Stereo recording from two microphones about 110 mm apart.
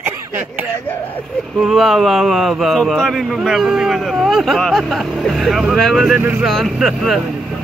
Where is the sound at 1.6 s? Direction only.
Centre (ahead or behind).